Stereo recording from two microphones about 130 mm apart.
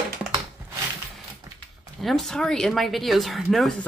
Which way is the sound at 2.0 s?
5° left (ahead or behind).